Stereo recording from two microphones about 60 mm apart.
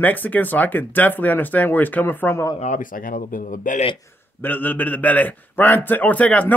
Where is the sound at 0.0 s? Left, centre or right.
Left.